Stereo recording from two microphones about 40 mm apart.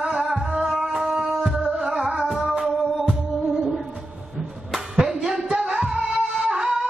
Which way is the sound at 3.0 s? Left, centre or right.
Centre.